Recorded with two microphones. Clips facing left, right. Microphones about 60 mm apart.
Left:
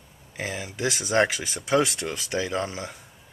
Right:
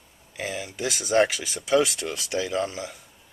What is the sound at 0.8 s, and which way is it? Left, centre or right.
Speech, centre.